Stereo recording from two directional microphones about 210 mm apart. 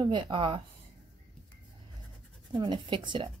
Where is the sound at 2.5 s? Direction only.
20° right (ahead or behind).